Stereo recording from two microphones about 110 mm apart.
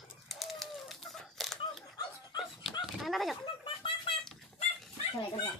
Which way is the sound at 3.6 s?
50° left (ahead or behind).